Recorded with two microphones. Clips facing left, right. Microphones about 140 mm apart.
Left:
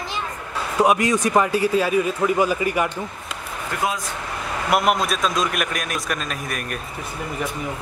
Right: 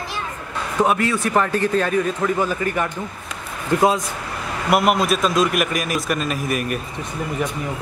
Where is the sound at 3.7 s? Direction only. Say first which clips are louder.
Right 9 dB; 25° right (ahead or behind).